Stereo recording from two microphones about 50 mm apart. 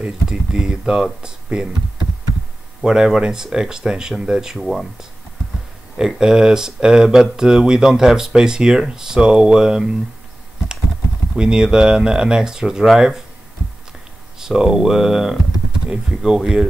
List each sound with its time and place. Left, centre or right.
0.0 s speech: centre
2.8 s speech: centre
4.6 s speech: centre
5.9 s speech: centre
11.3 s speech: centre
14.4 s speech: centre